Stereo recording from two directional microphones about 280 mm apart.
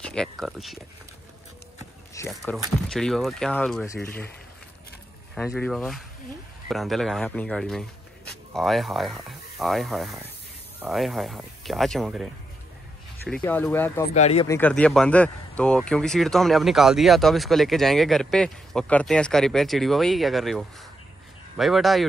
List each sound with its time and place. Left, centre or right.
0.1 s speech: centre
2.1 s speech: centre
5.3 s speech: centre
13.3 s speech: centre
14.1 s speech: left
14.5 s speech: centre